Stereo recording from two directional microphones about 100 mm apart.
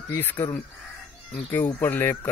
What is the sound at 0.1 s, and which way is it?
Speech, 20° left (ahead or behind).